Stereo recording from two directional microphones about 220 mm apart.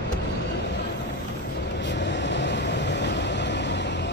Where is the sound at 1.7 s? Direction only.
50° left (ahead or behind).